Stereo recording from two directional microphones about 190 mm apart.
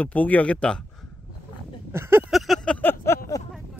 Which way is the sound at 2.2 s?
Centre (ahead or behind).